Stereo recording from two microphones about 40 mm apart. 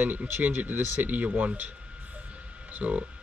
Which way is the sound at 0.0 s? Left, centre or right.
Right.